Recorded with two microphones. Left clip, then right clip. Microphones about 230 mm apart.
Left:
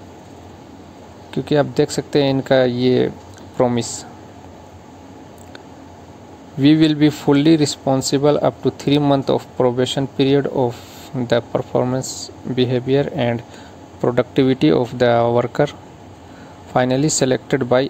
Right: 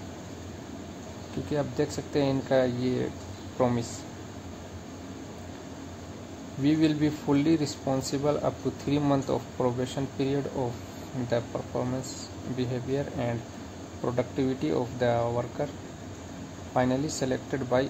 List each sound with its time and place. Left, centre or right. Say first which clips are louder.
1.5 s speech: left 13 dB; left
6.6 s speech: left 11 dB; left
16.7 s speech: left 10 dB; left